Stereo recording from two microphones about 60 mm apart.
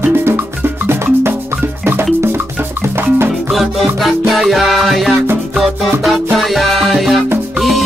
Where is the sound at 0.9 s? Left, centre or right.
Right.